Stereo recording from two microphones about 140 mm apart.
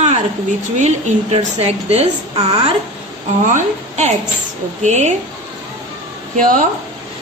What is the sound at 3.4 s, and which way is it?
A woman's voice, 60° right (ahead or behind).